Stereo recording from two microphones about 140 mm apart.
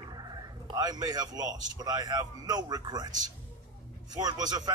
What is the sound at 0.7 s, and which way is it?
A man's voice, 30° right (ahead or behind).